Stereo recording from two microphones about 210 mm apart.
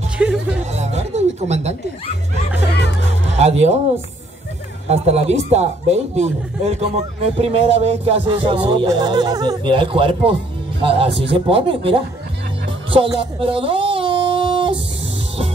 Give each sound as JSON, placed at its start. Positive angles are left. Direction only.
{"t": 0.2, "sound": "music", "side_deg": -5}
{"t": 0.7, "sound": "speech", "side_deg": -30}
{"t": 3.3, "sound": "speech", "side_deg": -30}
{"t": 4.8, "sound": "a man's voice", "side_deg": -30}
{"t": 12.9, "sound": "music", "side_deg": -25}